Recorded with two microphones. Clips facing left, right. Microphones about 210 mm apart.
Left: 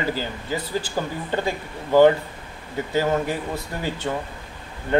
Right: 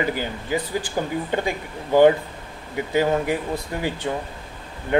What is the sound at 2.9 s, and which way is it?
Speech, 15° right (ahead or behind).